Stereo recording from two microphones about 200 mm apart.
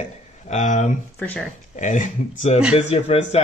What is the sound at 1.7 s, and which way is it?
Speech, 40° left (ahead or behind).